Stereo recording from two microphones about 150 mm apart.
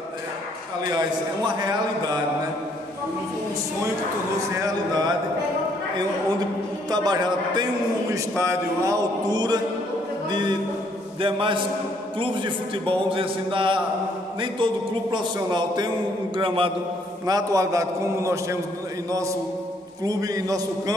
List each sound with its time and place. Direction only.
1.5 s a man's voice: 30° right (ahead or behind)
4.4 s a man's voice: 25° right (ahead or behind)
6.9 s a man's voice: 25° right (ahead or behind)
17.3 s a man's voice: 25° right (ahead or behind)
20.1 s a man's voice: 25° right (ahead or behind)